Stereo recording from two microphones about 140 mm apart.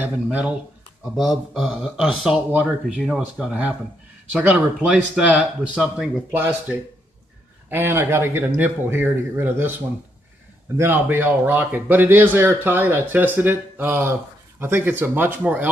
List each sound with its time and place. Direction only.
0.0 s speech: 10° right (ahead or behind)
10.8 s speech: 15° right (ahead or behind)